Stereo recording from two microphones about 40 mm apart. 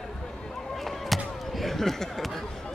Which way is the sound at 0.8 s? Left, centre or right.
Centre.